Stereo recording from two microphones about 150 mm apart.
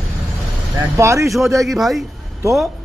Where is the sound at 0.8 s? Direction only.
20° right (ahead or behind).